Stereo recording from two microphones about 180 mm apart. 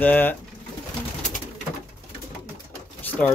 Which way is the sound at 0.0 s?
10° left (ahead or behind).